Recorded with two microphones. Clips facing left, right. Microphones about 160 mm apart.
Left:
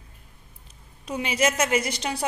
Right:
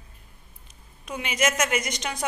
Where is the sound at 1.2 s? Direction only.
35° left (ahead or behind).